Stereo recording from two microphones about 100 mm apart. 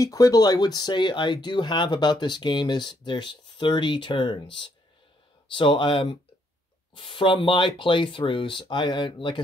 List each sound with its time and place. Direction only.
0.0 s speech: 35° left (ahead or behind); by 9.4 s 55° left (ahead or behind)